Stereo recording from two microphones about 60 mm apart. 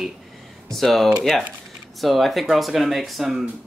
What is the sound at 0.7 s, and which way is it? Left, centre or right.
Speech, centre.